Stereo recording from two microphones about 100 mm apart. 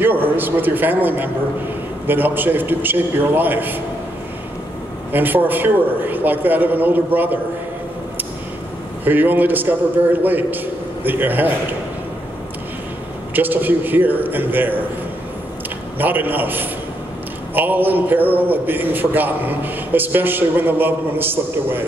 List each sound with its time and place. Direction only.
0.0 s a man's voice: 20° right (ahead or behind)
5.1 s a man's voice: 20° right (ahead or behind)
9.0 s a man's voice: 20° right (ahead or behind)
13.3 s a man's voice: 20° right (ahead or behind)
16.0 s a man's voice: 20° right (ahead or behind)